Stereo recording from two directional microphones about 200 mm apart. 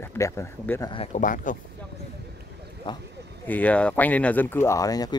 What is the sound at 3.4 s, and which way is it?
Speech, 10° left (ahead or behind).